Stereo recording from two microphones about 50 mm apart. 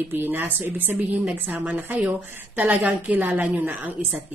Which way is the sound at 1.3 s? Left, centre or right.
Right.